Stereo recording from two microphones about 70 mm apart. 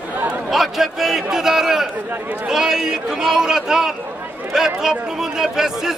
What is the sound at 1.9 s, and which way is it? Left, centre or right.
Speech, right.